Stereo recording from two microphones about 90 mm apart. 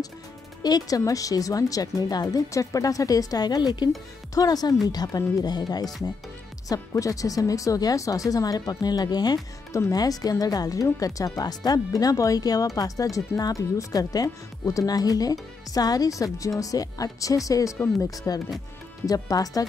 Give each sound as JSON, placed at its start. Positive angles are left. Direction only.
{"t": 0.6, "sound": "a woman's voice", "side_deg": 50}